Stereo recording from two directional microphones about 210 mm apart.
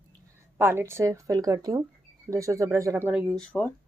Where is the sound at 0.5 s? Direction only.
10° right (ahead or behind); by 3.7 s 5° left (ahead or behind).